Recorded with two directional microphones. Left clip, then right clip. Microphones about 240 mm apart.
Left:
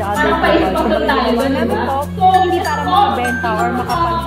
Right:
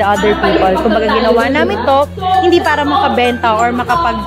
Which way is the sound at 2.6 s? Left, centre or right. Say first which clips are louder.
Right 2 dB; right.